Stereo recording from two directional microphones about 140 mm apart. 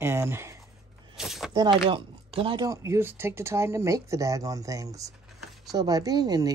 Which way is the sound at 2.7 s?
20° right (ahead or behind).